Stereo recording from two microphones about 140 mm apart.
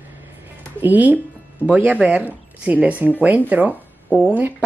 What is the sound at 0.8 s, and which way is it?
Speech, 10° right (ahead or behind).